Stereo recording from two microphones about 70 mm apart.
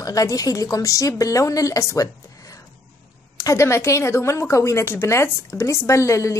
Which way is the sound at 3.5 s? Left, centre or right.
Left.